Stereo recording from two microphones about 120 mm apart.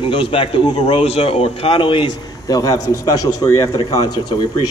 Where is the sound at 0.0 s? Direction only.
45° left (ahead or behind).